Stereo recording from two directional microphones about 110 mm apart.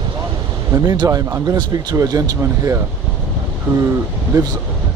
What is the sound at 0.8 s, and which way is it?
Speech, 35° right (ahead or behind).